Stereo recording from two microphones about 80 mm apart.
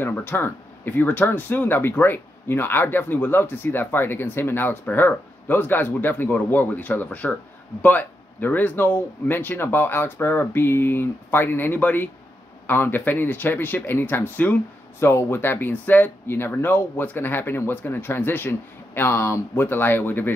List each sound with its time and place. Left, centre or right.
0.0 s speech: left